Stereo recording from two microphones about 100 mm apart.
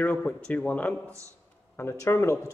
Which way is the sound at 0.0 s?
15° left (ahead or behind).